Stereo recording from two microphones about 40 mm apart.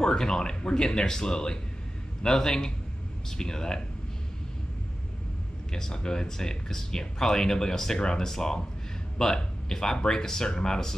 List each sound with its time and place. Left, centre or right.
0.0 s speech: centre
5.7 s speech: centre